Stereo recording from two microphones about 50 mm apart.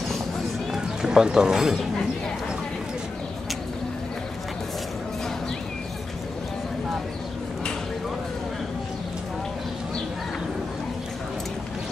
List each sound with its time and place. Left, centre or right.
0.7 s speech: centre